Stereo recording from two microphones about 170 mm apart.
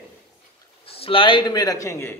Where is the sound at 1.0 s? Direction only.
30° left (ahead or behind); by 2.2 s 15° left (ahead or behind).